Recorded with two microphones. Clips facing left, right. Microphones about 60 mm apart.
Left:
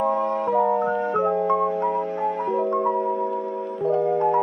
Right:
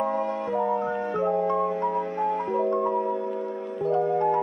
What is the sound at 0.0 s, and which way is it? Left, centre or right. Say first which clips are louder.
Music: left 4 dB; left.